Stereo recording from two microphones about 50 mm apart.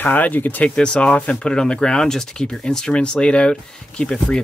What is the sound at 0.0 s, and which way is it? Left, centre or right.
Speech, left.